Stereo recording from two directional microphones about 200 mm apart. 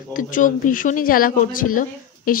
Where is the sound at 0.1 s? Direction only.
40° left (ahead or behind).